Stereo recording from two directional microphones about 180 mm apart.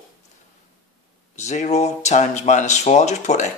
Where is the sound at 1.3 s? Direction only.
40° left (ahead or behind).